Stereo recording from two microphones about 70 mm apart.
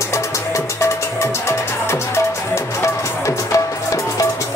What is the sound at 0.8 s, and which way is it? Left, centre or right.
Music, left.